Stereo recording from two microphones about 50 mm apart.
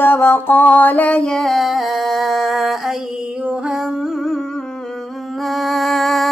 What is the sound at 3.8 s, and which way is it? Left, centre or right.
Humming, centre.